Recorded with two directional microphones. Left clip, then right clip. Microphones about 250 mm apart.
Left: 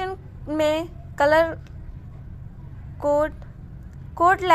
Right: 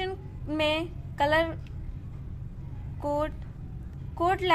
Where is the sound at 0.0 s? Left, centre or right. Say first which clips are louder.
Left 4 dB; centre.